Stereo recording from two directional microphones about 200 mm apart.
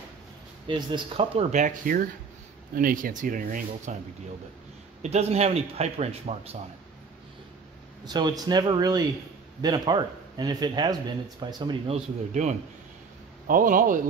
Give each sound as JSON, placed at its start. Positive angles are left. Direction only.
{"t": 0.7, "sound": "speech", "side_deg": -25}
{"t": 5.0, "sound": "a man's voice", "side_deg": -35}
{"t": 8.0, "sound": "speech", "side_deg": -20}
{"t": 13.5, "sound": "speech", "side_deg": -45}